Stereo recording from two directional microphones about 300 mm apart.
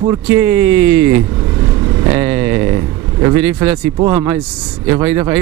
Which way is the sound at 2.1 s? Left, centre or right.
Centre.